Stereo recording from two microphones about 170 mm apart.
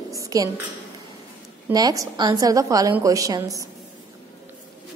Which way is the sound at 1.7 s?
20° right (ahead or behind).